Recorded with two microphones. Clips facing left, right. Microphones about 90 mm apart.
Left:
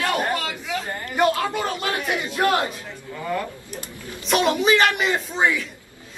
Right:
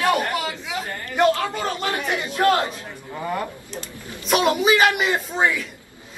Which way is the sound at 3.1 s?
25° right (ahead or behind).